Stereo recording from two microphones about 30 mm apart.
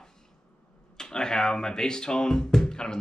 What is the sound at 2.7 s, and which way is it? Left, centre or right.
Music, left.